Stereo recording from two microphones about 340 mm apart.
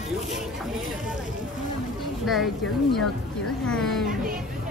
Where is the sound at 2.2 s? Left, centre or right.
Centre.